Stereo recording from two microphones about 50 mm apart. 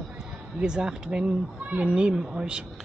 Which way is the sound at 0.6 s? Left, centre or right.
Centre.